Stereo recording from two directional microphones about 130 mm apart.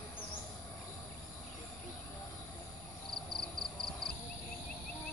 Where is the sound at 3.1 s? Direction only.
5° left (ahead or behind).